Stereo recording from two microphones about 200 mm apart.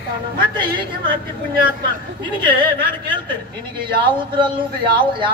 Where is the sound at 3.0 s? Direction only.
25° right (ahead or behind).